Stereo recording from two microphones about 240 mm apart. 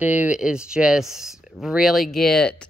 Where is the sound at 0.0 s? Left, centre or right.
Centre.